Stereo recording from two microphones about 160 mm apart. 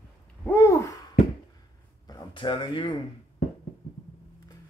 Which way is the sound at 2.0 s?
25° left (ahead or behind).